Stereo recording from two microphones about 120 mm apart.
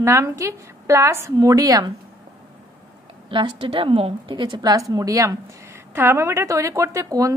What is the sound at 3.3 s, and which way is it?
A woman's voice, 45° right (ahead or behind).